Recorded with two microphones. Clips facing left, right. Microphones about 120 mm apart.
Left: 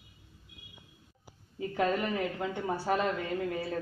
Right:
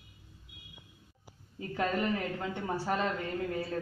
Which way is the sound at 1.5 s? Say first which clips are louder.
Left 2 dB; 15° left (ahead or behind).